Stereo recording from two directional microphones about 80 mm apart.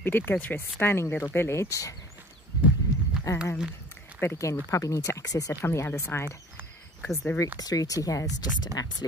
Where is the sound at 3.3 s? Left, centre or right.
Left.